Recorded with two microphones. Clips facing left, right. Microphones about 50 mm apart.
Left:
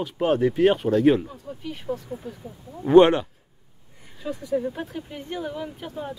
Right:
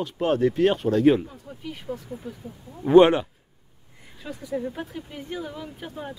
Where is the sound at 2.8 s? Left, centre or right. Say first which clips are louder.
Even; centre.